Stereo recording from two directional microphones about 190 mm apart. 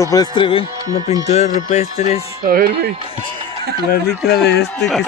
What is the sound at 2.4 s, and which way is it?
Speech, 50° right (ahead or behind).